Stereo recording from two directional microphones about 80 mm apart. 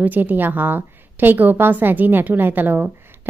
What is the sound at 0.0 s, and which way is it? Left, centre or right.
A woman's voice, right.